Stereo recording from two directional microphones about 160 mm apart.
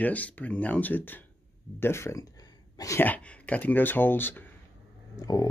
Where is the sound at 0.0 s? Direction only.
10° left (ahead or behind).